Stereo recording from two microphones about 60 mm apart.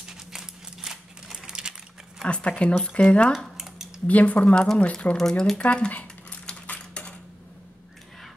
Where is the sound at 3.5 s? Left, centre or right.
Centre.